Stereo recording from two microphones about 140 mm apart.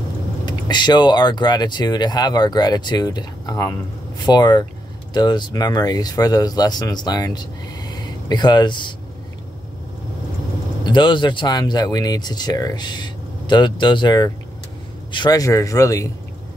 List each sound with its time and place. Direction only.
0.5 s speech: 30° left (ahead or behind)
10.9 s speech: 35° left (ahead or behind)